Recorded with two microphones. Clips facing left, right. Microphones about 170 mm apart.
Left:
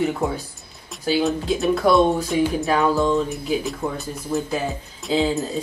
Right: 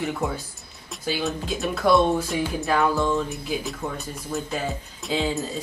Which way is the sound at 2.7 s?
20° left (ahead or behind).